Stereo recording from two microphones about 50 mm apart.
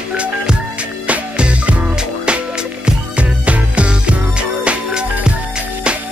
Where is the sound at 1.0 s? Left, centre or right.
Right.